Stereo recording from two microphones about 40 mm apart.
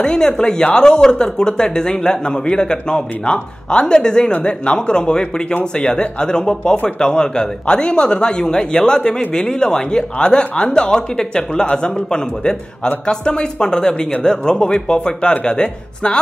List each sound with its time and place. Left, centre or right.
0.0 s a man's voice: centre
4.3 s a man's voice: left